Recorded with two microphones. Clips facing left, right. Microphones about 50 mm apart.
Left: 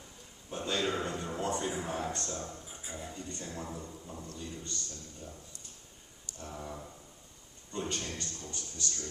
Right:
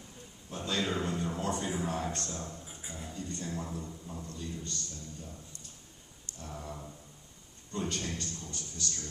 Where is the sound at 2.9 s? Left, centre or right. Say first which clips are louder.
Right 1 dB; centre.